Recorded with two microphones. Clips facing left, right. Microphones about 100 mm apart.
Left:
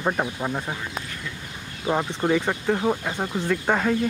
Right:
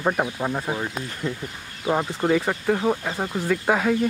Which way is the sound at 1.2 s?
35° right (ahead or behind).